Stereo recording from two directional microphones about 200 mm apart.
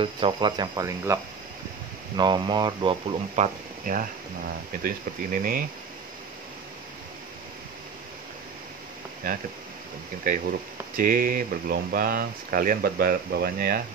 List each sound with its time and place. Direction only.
0.0 s speech: 25° right (ahead or behind)
3.8 s speech: 45° right (ahead or behind)
10.2 s speech: 40° right (ahead or behind)